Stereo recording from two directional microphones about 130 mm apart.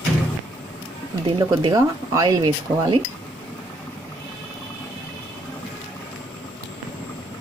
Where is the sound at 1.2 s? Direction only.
40° right (ahead or behind).